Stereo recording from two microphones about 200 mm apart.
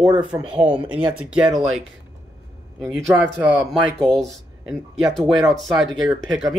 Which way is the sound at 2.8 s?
Centre (ahead or behind).